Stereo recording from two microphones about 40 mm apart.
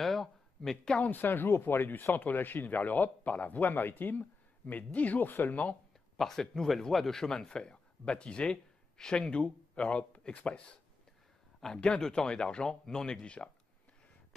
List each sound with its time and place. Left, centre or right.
0.0 s a sound: centre
1.2 s a man's voice: left
6.1 s a man's voice: centre
9.4 s a man's voice: left
11.8 s speech: left